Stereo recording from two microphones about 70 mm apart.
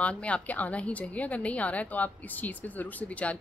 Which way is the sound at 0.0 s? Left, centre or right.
Centre.